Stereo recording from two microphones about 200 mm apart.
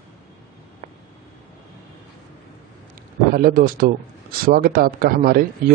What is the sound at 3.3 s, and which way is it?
Speech, 45° right (ahead or behind).